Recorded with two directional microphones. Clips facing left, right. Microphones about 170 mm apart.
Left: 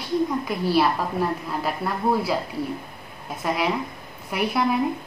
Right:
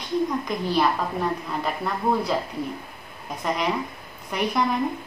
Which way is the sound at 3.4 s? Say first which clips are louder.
Left 1 dB; 5° left (ahead or behind).